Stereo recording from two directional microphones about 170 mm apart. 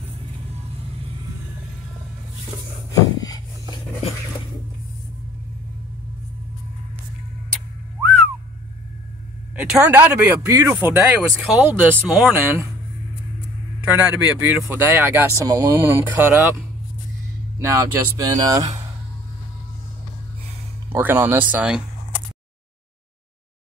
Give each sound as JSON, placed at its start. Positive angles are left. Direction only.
{"t": 2.9, "sound": "a sound", "side_deg": 20}
{"t": 9.6, "sound": "speech", "side_deg": -5}
{"t": 13.9, "sound": "speech", "side_deg": -10}
{"t": 17.6, "sound": "speech", "side_deg": -20}
{"t": 20.9, "sound": "speech", "side_deg": -10}